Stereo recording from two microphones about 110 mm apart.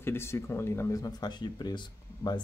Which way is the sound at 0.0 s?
20° left (ahead or behind).